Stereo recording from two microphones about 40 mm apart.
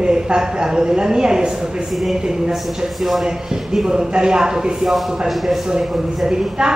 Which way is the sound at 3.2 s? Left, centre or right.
Centre.